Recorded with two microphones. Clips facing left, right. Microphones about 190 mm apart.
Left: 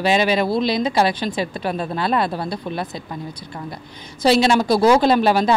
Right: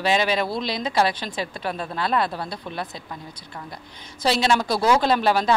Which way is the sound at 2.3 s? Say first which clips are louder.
Left 6 dB; 30° left (ahead or behind).